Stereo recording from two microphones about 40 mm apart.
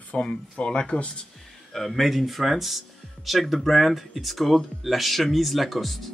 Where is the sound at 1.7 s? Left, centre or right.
Centre.